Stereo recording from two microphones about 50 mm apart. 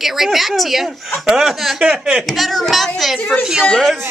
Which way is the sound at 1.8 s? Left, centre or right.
Centre.